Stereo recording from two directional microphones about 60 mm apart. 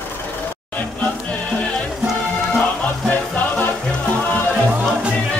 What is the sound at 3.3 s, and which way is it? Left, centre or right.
Music, left.